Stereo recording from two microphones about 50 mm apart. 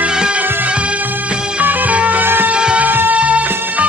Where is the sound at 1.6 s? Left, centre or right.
Right.